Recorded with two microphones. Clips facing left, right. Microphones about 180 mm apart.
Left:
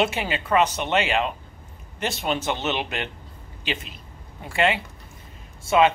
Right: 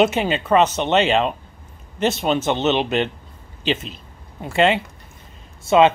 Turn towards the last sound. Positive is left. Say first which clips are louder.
# right 4 dB
turn(degrees=-25)  # may be behind; listen again after turning